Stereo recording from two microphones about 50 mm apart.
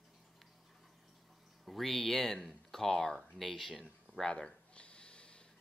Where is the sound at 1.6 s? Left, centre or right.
Centre.